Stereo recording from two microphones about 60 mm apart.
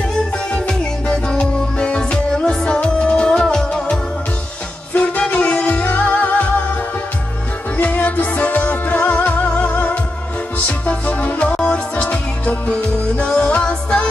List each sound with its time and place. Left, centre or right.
0.5 s music: centre
4.9 s music: left
7.7 s music: left
9.5 s music: centre
10.9 s music: left